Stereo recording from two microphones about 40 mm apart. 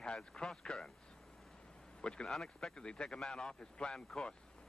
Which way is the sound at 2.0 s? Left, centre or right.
Left.